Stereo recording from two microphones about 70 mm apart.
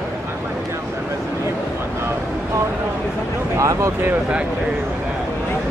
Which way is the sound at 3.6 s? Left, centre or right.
Right.